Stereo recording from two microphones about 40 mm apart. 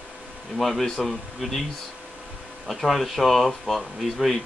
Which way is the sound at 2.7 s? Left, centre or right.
Centre.